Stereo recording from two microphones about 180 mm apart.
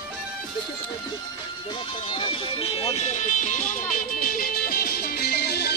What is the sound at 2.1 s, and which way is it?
Music, 30° left (ahead or behind).